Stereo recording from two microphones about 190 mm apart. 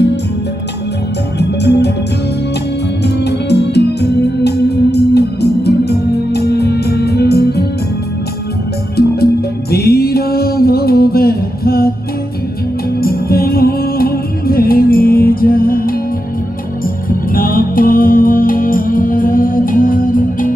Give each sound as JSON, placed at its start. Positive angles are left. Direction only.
{"t": 1.6, "sound": "music", "side_deg": 60}
{"t": 3.0, "sound": "music", "side_deg": 60}
{"t": 8.9, "sound": "music", "side_deg": 55}
{"t": 13.0, "sound": "music", "side_deg": 50}